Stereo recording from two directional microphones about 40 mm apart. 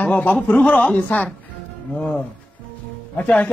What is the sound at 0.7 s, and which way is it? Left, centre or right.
Speech, left.